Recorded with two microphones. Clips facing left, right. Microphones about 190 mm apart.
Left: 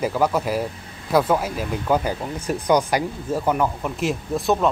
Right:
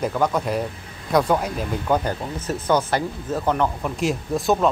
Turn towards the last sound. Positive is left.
turn(degrees=0)  # may be behind; listen again after turning